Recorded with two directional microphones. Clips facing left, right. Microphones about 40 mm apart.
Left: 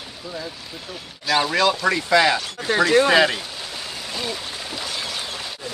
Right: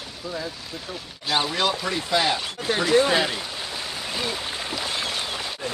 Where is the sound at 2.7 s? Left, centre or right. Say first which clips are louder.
Left 4 dB; left.